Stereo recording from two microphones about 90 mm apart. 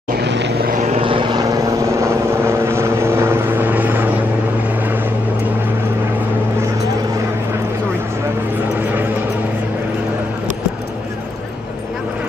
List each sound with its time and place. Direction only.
0.9 s vehicle: 75° right (ahead or behind)
1.3 s vehicle: 40° right (ahead or behind); by 4.0 s 15° right (ahead or behind)